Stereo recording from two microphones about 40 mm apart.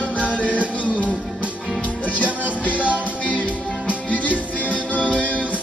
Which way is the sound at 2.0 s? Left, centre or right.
Left.